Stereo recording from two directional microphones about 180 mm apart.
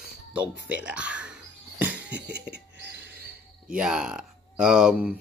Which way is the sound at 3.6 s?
5° right (ahead or behind).